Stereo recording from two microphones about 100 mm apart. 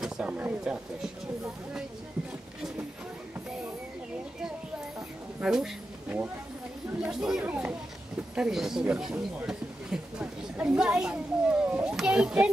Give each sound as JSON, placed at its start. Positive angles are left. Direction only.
{"t": 0.0, "sound": "speech", "side_deg": -15}
{"t": 5.4, "sound": "speech", "side_deg": -5}